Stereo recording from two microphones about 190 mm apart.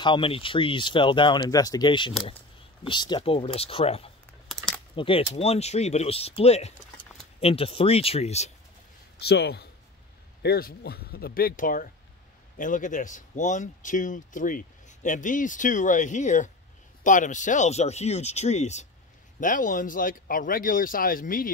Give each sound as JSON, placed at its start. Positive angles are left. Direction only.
{"t": 0.0, "sound": "speech", "side_deg": 25}
{"t": 9.2, "sound": "speech", "side_deg": 60}